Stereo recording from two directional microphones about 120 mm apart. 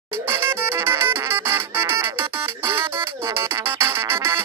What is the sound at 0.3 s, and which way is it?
Music, 20° right (ahead or behind).